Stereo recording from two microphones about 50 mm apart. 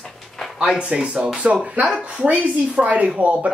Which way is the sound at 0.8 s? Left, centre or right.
Right.